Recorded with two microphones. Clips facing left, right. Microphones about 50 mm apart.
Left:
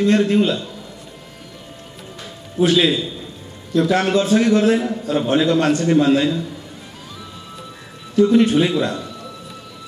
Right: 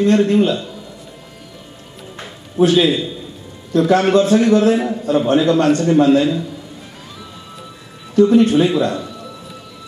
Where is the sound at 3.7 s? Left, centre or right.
Right.